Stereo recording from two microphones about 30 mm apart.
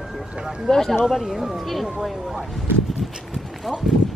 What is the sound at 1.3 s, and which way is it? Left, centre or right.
Speech, centre.